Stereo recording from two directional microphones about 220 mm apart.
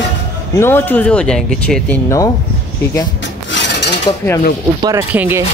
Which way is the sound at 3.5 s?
55° left (ahead or behind).